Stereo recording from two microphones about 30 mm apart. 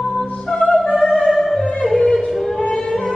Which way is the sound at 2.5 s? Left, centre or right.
Left.